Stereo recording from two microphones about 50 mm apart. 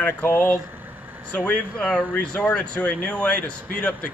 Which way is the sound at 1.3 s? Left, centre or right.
Left.